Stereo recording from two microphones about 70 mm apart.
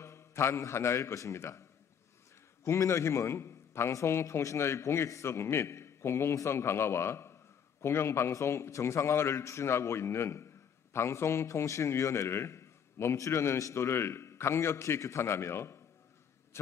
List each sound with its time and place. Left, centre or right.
0.0 s a man's voice: left
2.6 s a man's voice: left